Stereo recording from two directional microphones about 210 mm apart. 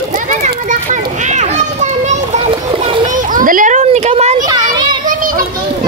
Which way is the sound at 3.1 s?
40° right (ahead or behind).